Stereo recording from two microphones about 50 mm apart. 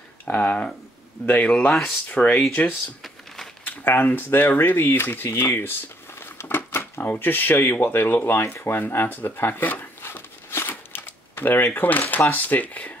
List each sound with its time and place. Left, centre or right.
0.2 s speech: left
3.8 s speech: left
10.5 s a sound: left
11.3 s speech: left